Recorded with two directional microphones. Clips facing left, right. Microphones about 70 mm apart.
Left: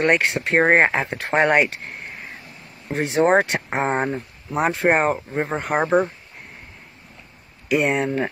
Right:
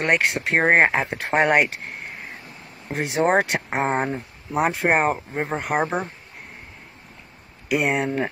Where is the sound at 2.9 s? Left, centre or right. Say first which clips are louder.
Left 3 dB; centre.